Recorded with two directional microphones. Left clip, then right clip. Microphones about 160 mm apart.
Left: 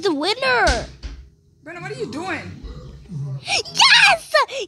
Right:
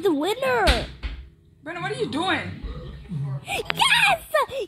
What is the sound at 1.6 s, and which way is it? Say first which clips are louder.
Speech: right 2 dB; 55° right (ahead or behind).